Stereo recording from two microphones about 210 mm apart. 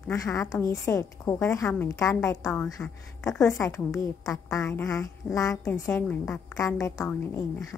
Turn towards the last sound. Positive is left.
turn(degrees=10)  # may be behind; listen again after turning